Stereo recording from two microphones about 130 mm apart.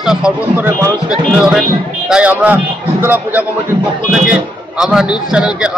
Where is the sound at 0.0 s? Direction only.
5° right (ahead or behind).